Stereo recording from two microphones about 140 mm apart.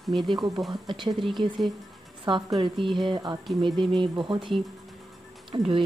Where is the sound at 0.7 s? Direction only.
35° right (ahead or behind).